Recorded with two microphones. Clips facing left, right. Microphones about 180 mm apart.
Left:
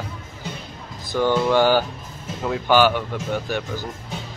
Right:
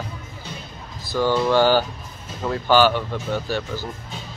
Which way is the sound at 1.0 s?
20° left (ahead or behind).